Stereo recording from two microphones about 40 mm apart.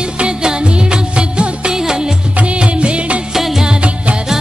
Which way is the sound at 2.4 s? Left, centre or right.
Right.